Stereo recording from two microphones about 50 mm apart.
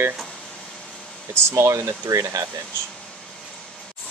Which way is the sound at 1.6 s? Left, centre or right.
Right.